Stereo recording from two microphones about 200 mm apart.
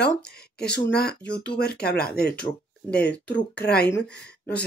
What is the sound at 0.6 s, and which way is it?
Speech, 55° left (ahead or behind).